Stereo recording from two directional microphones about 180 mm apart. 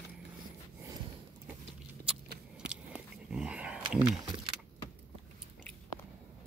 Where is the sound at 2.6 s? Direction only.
5° right (ahead or behind).